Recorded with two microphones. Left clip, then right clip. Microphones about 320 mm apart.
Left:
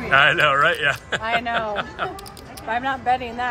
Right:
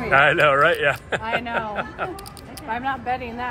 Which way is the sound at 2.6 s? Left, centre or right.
Left.